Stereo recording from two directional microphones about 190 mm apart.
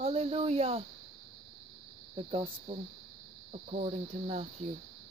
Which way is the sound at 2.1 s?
25° right (ahead or behind).